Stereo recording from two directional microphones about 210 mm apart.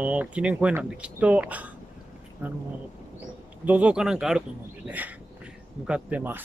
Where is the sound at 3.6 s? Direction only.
5° right (ahead or behind).